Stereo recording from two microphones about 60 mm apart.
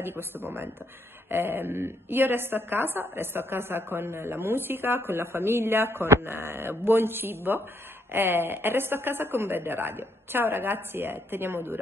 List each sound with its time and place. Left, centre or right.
0.0 s a woman's voice: right